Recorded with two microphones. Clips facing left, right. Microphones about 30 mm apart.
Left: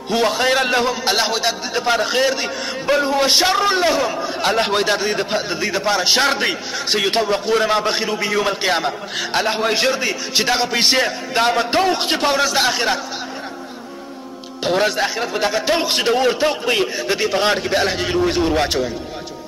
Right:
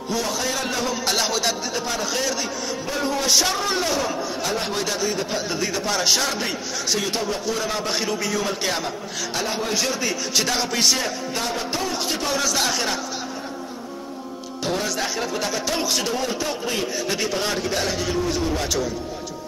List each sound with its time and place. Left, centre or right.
0.1 s a man's voice: left
1.0 s a man's voice: left
4.4 s a man's voice: left
5.5 s a man's voice: left
6.2 s a man's voice: left
7.9 s a man's voice: left
12.4 s a man's voice: left
14.6 s a man's voice: left
17.1 s a man's voice: left
17.4 s a man's voice: left